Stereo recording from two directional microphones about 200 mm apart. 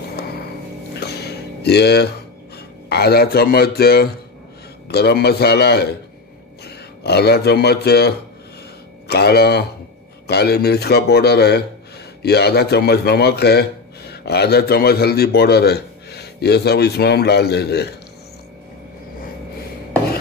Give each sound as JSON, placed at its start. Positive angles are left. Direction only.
{"t": 0.9, "sound": "music", "side_deg": 55}
{"t": 2.9, "sound": "a man's voice", "side_deg": 55}